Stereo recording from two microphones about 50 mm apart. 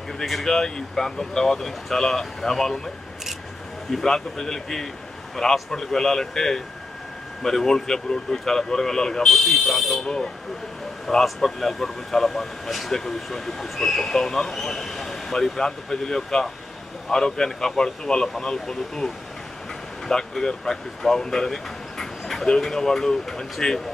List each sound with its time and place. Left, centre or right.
0.2 s speech: centre
3.9 s speech: centre
9.5 s speech: centre
10.0 s speech: centre
20.1 s speech: centre